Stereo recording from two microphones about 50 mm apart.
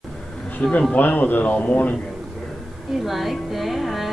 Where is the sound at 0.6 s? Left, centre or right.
Left.